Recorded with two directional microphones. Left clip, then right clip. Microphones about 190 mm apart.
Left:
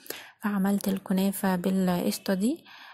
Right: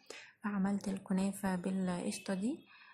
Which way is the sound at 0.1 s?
35° left (ahead or behind).